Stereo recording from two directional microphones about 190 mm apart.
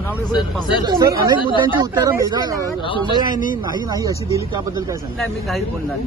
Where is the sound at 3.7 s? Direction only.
20° right (ahead or behind).